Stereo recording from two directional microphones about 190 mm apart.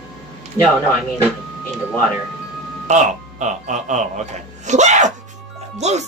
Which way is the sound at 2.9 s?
40° right (ahead or behind).